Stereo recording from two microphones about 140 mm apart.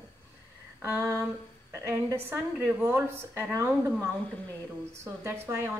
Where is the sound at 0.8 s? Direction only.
20° right (ahead or behind).